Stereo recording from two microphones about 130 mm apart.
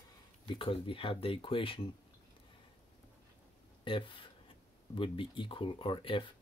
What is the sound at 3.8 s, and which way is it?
Speech, 40° left (ahead or behind).